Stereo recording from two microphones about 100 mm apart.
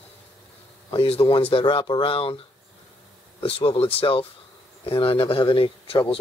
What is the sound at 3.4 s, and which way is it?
Speech, 70° left (ahead or behind).